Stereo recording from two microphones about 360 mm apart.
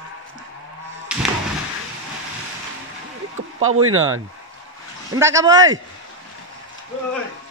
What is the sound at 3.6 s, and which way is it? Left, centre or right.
Speech, right.